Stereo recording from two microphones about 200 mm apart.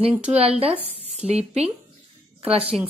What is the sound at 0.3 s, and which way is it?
A woman's voice, 30° right (ahead or behind).